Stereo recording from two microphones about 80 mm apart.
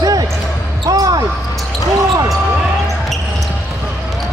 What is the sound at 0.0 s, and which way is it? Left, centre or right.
Basketball bounce, right.